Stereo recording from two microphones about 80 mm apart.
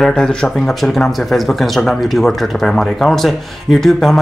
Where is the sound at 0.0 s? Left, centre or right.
Centre.